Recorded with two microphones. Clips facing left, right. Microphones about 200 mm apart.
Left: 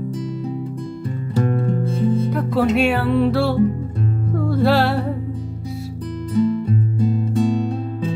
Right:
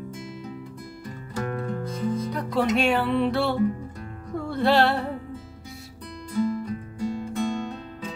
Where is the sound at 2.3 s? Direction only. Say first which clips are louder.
Left 6 dB; 5° left (ahead or behind).